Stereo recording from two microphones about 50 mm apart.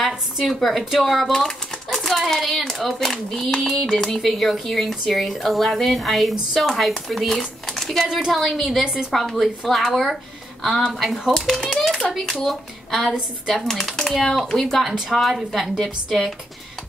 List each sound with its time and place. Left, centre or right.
0.5 s a child's voice: centre
11.3 s a child's voice: centre
13.1 s a woman's voice: centre
13.7 s a woman's voice: centre